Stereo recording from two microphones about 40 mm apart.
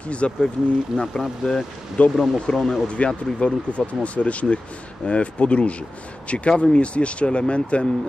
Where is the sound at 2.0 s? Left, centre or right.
Left.